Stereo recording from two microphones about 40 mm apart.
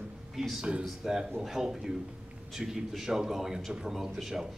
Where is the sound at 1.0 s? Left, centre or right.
Centre.